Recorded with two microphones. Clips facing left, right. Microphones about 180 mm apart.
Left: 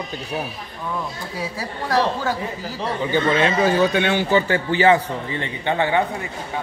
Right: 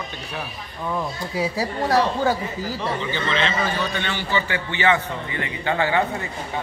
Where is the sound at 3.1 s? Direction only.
50° left (ahead or behind); by 6.0 s 20° left (ahead or behind).